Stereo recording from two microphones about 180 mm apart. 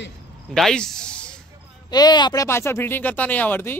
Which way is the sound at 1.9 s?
25° left (ahead or behind).